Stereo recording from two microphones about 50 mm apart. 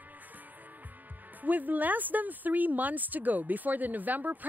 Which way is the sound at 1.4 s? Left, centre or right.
Right.